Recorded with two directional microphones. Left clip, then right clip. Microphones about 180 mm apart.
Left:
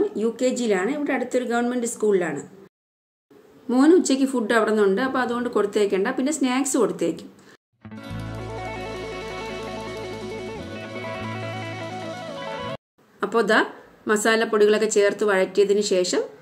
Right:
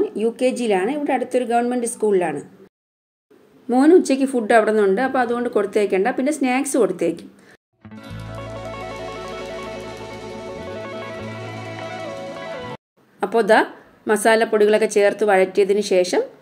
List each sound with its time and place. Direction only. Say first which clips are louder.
0.1 s a woman's voice: right 3 dB; 15° right (ahead or behind)
3.7 s a woman's voice: right 3 dB; 10° right (ahead or behind)
7.9 s music: even; centre (ahead or behind)
10.2 s music: right 1 dB; centre (ahead or behind)
12.4 s music: even; centre (ahead or behind)
13.2 s a woman's voice: right 4 dB; 15° right (ahead or behind)